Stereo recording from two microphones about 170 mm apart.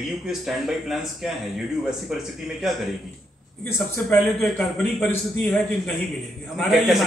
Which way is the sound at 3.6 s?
10° left (ahead or behind).